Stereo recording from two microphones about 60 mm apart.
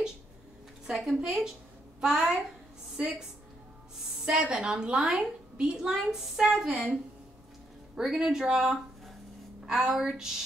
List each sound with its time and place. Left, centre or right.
0.8 s a woman's voice: centre
4.0 s a sound: centre
4.3 s a woman's voice: centre